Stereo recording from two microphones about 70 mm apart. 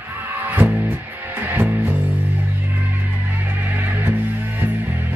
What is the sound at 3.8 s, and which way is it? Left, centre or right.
Music, right.